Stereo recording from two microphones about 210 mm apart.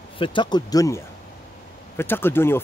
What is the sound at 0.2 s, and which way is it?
Speech, 20° left (ahead or behind).